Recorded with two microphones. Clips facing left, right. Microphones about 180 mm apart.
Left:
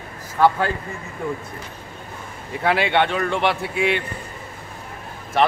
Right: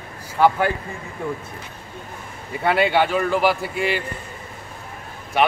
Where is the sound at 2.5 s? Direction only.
Centre (ahead or behind).